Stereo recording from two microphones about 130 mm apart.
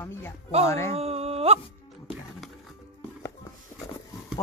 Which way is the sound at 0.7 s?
20° left (ahead or behind).